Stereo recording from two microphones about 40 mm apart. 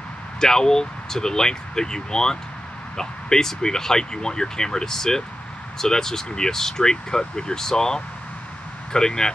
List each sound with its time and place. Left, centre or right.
0.4 s speech: centre